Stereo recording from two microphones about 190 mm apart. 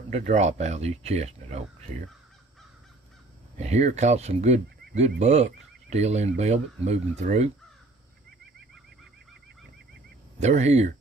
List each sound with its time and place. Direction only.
0.1 s speech: 40° right (ahead or behind)
3.5 s speech: 35° right (ahead or behind)
10.4 s speech: 35° right (ahead or behind)